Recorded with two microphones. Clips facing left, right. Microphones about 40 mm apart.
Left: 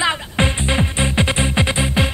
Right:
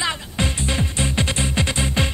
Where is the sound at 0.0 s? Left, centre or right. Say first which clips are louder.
Left 5 dB; left.